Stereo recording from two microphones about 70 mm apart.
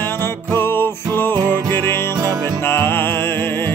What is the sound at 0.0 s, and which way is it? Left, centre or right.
Music, left.